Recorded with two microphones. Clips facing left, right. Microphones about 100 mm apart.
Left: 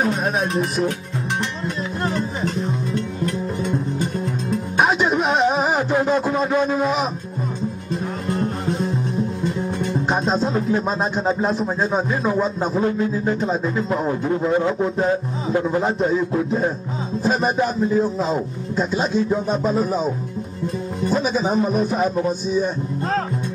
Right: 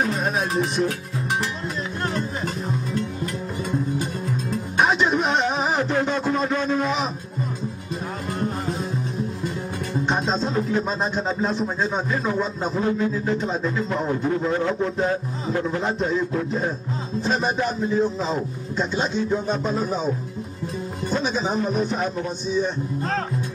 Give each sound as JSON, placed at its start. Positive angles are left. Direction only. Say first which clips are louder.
{"t": 0.0, "sound": "music", "louder": "left 3 dB", "side_deg": 0}
{"t": 2.0, "sound": "speech", "louder": "left 4 dB", "side_deg": 0}
{"t": 4.7, "sound": "music", "louder": "left 1 dB", "side_deg": 0}
{"t": 5.9, "sound": "a man's voice", "louder": "left 3 dB", "side_deg": 5}
{"t": 8.3, "sound": "music", "louder": "left 4 dB", "side_deg": 0}
{"t": 10.0, "sound": "speech", "louder": "left 2 dB", "side_deg": 5}
{"t": 14.6, "sound": "a man's voice", "louder": "left 3 dB", "side_deg": 15}
{"t": 15.8, "sound": "speech", "louder": "left 4 dB", "side_deg": 5}